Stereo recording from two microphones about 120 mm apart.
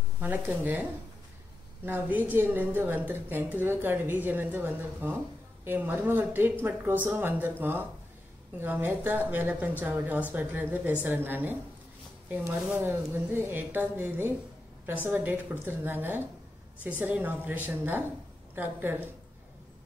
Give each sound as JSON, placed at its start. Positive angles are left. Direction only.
{"t": 0.2, "sound": "a woman's voice", "side_deg": -15}
{"t": 1.9, "sound": "a woman's voice", "side_deg": -15}
{"t": 8.5, "sound": "a woman's voice", "side_deg": -15}
{"t": 12.8, "sound": "a woman's voice", "side_deg": -20}